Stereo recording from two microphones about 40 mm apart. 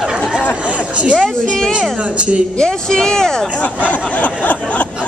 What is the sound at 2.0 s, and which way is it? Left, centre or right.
Speech, right.